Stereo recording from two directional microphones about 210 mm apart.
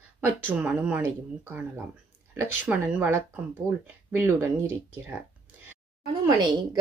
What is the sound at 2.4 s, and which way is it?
Speech, 5° right (ahead or behind).